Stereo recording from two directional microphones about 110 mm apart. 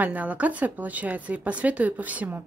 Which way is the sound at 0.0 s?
15° right (ahead or behind).